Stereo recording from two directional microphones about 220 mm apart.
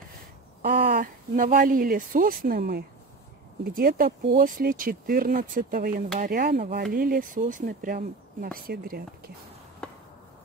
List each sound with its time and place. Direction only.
0.6 s speech: 40° right (ahead or behind)
9.8 s chop: 5° left (ahead or behind)